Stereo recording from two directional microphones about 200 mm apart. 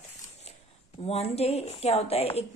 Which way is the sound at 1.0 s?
30° left (ahead or behind).